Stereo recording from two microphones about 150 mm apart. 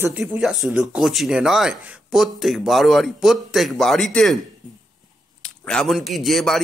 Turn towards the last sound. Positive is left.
turn(degrees=0)  # may be behind; listen again after turning